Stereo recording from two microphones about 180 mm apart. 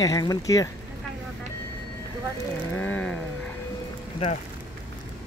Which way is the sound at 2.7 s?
10° left (ahead or behind).